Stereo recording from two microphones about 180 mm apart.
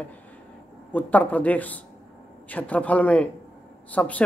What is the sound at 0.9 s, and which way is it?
Speech, 10° left (ahead or behind).